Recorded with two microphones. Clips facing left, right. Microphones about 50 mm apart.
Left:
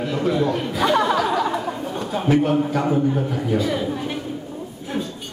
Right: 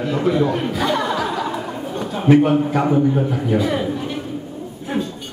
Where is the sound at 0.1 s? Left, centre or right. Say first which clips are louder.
Right 3 dB; centre.